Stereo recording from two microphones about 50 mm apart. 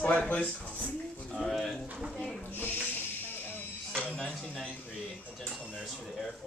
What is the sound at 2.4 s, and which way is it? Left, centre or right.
Snake, left.